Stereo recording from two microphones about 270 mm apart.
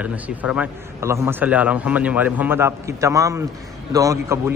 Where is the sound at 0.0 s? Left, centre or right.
Centre.